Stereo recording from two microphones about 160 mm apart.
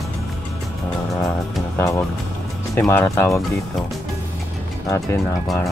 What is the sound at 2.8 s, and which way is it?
Speech, 10° left (ahead or behind).